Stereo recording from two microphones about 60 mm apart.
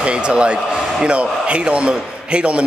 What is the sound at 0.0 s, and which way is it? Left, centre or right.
Speech, centre.